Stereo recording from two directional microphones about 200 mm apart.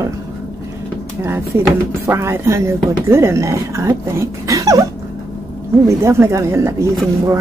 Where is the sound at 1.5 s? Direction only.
15° right (ahead or behind).